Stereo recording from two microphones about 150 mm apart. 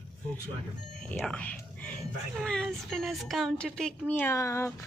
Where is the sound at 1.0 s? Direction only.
5° left (ahead or behind).